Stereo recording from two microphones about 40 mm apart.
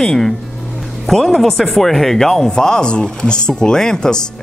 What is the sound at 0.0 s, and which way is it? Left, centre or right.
Speech, centre.